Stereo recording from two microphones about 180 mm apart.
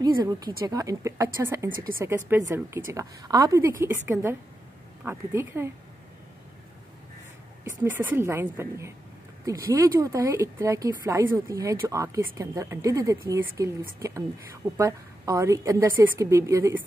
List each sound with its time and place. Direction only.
0.0 s speech: 20° right (ahead or behind)
7.9 s speech: 15° right (ahead or behind)